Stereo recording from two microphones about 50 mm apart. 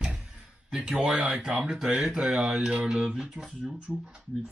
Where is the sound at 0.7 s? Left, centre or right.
Centre.